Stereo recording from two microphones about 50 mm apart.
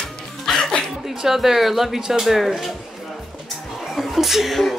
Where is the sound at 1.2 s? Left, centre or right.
Centre.